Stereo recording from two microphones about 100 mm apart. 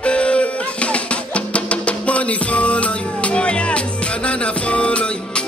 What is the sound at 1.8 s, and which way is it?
Music, 15° left (ahead or behind).